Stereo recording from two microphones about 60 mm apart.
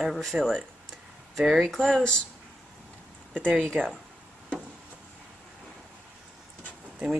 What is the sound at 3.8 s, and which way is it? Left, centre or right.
Speech, centre.